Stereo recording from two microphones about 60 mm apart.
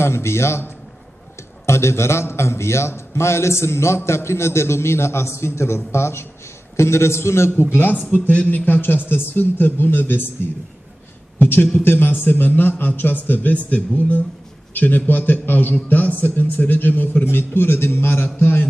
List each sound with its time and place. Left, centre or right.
0.0 s a man's voice: left
1.7 s a man's voice: left
7.7 s a man's voice: left
11.3 s a man's voice: left